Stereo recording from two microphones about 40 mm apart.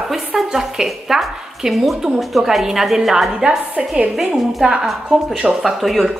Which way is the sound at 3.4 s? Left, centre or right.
Right.